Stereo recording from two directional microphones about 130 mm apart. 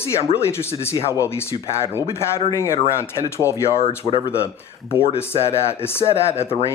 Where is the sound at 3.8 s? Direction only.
45° left (ahead or behind).